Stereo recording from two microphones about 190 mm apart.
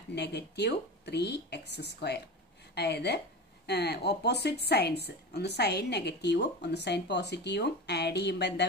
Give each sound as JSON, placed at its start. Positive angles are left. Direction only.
{"t": 0.1, "sound": "a woman's voice", "side_deg": 60}